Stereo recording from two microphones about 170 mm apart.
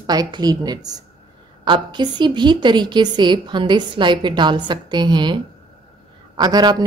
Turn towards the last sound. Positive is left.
turn(degrees=-25)  # may be behind; listen again after turning